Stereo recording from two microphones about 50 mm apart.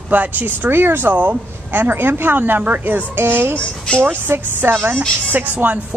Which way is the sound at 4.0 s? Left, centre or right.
Right.